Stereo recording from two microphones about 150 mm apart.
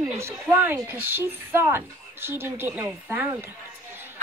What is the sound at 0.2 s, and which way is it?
A woman's voice, 15° right (ahead or behind).